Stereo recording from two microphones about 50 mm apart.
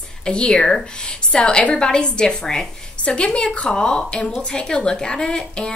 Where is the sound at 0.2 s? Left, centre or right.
Centre.